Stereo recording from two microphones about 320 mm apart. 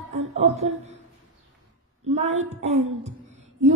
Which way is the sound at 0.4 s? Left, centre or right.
Centre.